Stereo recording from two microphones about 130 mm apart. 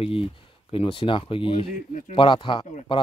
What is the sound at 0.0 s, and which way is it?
Speech, 45° left (ahead or behind).